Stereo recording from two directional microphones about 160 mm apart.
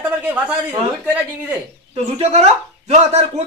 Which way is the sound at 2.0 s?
45° right (ahead or behind).